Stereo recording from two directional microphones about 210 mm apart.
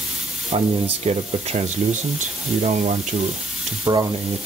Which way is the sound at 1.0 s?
30° right (ahead or behind).